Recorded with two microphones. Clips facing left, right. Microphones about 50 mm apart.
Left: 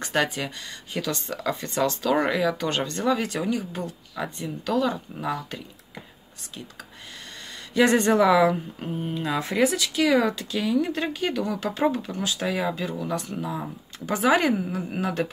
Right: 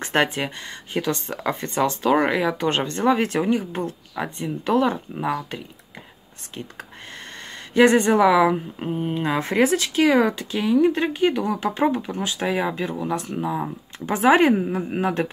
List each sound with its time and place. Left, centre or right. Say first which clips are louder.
0.0 s a woman's voice: right 4 dB; right
7.7 s speech: right 4 dB; right
8.0 s a woman's voice: right 2 dB; centre